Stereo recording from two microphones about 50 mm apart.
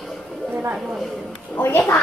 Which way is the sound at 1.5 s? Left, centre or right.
Left.